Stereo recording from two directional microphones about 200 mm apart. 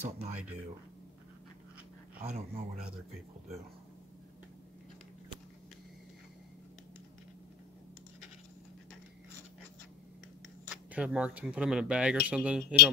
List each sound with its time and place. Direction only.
0.0 s speech: 30° right (ahead or behind)
2.2 s speech: 35° right (ahead or behind)
10.7 s speech: 5° right (ahead or behind)